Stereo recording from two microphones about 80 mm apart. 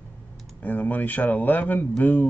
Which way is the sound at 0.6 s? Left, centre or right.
Left.